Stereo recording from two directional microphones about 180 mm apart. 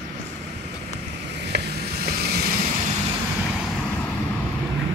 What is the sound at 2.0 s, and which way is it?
Vehicle, 60° right (ahead or behind).